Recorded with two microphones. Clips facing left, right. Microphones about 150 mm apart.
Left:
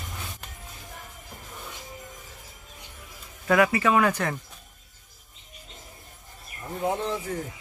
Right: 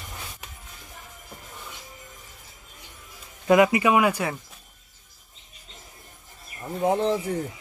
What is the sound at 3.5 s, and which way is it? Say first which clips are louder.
Speech: right 3 dB; 15° right (ahead or behind).